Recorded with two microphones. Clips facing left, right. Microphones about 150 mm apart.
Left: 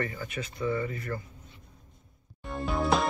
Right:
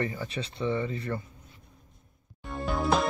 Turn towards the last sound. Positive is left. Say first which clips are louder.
# even
turn(degrees=0)  # may be behind; listen again after turning